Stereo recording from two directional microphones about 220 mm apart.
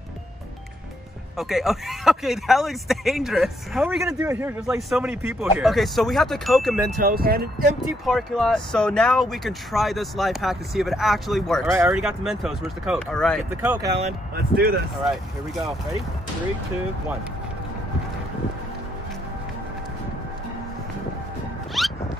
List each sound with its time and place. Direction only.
1.4 s speech: centre (ahead or behind)
4.0 s speech: 15° right (ahead or behind)
7.0 s speech: 40° right (ahead or behind)
8.0 s speech: centre (ahead or behind)
13.7 s speech: 15° right (ahead or behind)
14.3 s speech: 45° right (ahead or behind)
21.8 s music: centre (ahead or behind)